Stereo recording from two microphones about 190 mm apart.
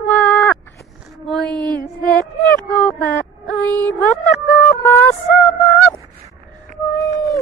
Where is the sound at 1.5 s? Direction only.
20° right (ahead or behind).